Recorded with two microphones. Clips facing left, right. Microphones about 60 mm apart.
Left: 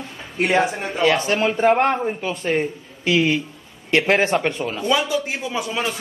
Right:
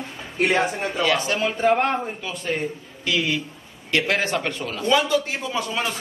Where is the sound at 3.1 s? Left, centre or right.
Left.